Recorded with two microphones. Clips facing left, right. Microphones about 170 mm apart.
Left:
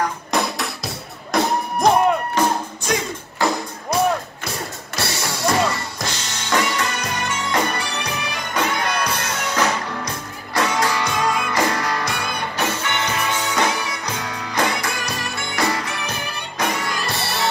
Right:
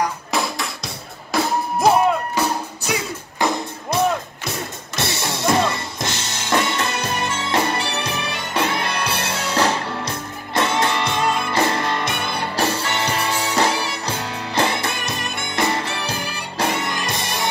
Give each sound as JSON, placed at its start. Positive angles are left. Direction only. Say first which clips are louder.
{"t": 0.0, "sound": "music", "louder": "left 1 dB", "side_deg": 0}
{"t": 3.4, "sound": "music", "louder": "even", "side_deg": -20}
{"t": 6.5, "sound": "music", "louder": "right 1 dB", "side_deg": -25}